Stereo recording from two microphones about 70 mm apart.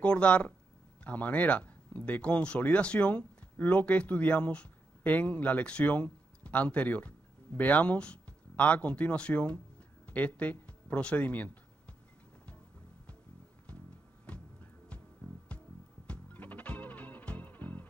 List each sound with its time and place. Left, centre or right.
0.0 s speech: centre
14.2 s music: centre